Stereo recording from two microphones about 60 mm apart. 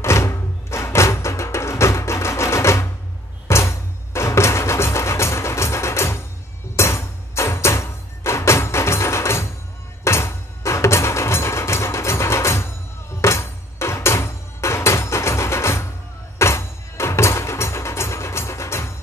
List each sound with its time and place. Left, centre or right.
0.0 s music: left
3.4 s a sound: left
6.8 s music: left